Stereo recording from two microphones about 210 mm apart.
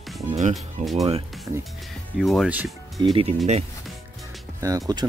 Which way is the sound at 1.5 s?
10° right (ahead or behind).